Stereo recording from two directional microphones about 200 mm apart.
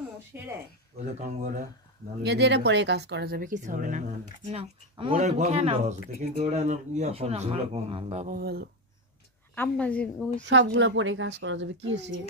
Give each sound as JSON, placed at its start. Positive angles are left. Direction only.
{"t": 0.3, "sound": "speech", "side_deg": -10}
{"t": 1.2, "sound": "speech", "side_deg": -35}
{"t": 2.2, "sound": "speech", "side_deg": -60}
{"t": 4.5, "sound": "speech", "side_deg": -30}
{"t": 8.4, "sound": "speech", "side_deg": -50}
{"t": 9.6, "sound": "a woman's voice", "side_deg": 5}
{"t": 10.4, "sound": "a woman's voice", "side_deg": -65}